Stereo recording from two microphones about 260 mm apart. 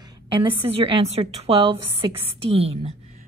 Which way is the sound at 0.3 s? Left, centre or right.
Right.